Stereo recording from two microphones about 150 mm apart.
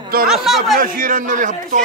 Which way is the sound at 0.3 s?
Centre (ahead or behind).